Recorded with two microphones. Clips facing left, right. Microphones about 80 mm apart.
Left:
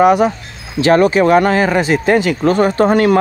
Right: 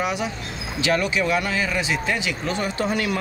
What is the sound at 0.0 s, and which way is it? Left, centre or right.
Speech, left.